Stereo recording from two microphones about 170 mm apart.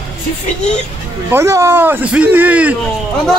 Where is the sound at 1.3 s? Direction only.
15° right (ahead or behind).